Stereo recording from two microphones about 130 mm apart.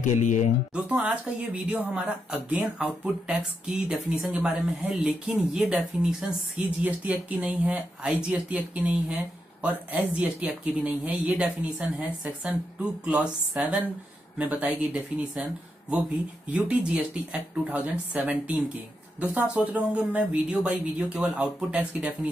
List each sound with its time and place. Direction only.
0.0 s speech: 75° left (ahead or behind)
0.8 s speech: 10° right (ahead or behind)
6.8 s speech: 10° right (ahead or behind)
16.5 s speech: 10° right (ahead or behind)